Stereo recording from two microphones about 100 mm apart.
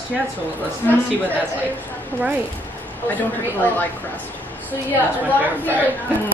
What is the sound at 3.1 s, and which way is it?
A woman's voice, 15° left (ahead or behind).